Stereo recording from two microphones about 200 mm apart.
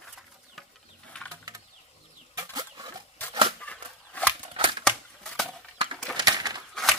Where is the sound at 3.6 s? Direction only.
5° left (ahead or behind).